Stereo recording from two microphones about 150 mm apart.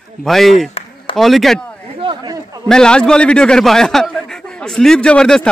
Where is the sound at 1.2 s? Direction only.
Centre (ahead or behind).